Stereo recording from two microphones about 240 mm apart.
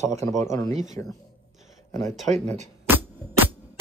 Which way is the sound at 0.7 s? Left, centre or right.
Right.